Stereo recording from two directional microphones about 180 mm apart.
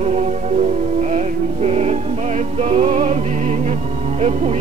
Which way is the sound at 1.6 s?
35° right (ahead or behind).